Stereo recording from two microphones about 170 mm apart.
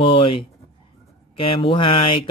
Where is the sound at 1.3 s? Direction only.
30° left (ahead or behind).